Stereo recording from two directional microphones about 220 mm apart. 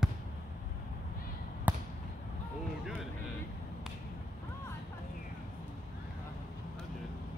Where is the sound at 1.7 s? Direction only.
5° right (ahead or behind).